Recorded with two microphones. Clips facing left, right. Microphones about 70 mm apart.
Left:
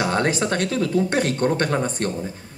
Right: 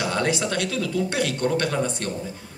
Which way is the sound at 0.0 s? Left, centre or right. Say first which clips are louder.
Left 3 dB; left.